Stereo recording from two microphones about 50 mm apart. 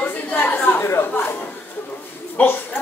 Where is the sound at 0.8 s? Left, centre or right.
Left.